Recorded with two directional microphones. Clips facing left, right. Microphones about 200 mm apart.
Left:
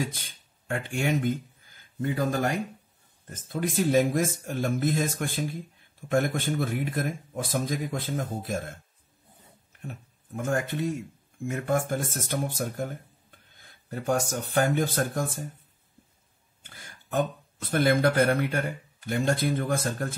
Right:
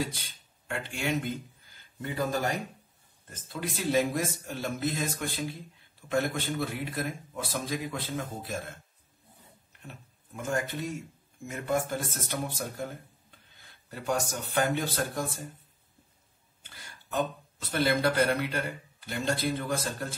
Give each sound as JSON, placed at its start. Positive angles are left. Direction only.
{"t": 0.0, "sound": "speech", "side_deg": 50}
{"t": 9.7, "sound": "a sound", "side_deg": 50}
{"t": 11.5, "sound": "speech", "side_deg": 50}
{"t": 13.6, "sound": "a sound", "side_deg": 50}
{"t": 14.5, "sound": "speech", "side_deg": 45}
{"t": 16.6, "sound": "speech", "side_deg": 50}